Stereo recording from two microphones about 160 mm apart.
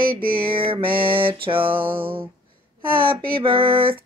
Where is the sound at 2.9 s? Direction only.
30° right (ahead or behind).